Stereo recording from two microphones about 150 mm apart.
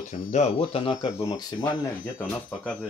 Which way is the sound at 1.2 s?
15° left (ahead or behind).